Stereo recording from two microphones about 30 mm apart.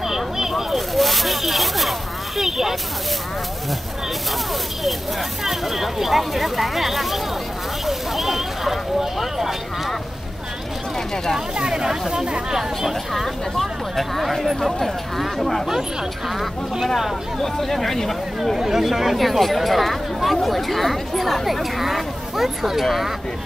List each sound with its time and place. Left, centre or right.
0.0 s a sound: centre
5.4 s speech: centre
7.8 s a sound: centre
9.2 s speech: centre
11.5 s speech: right
13.1 s speech: centre
17.4 s speech: centre
18.6 s speech: centre